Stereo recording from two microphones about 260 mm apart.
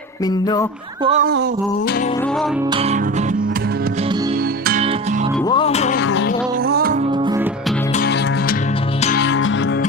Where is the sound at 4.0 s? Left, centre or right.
Centre.